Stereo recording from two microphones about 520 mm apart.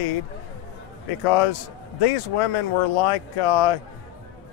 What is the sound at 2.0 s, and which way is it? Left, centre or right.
Speech, left.